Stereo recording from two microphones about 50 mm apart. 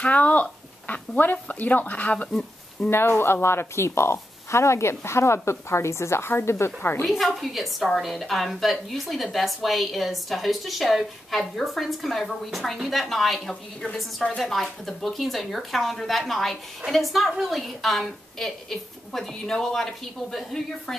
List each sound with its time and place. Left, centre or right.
0.0 s speech: left
2.9 s speech: left
7.1 s speech: centre
14.4 s speech: centre